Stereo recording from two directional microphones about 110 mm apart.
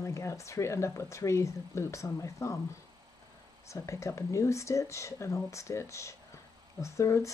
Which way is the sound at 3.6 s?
25° left (ahead or behind).